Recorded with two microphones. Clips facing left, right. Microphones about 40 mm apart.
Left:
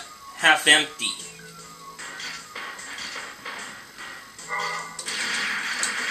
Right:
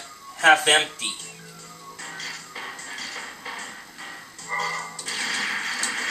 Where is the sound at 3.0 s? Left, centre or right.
Centre.